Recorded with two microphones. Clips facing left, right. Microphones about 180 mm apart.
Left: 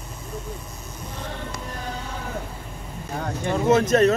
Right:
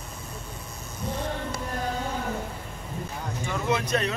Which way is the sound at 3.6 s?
45° left (ahead or behind).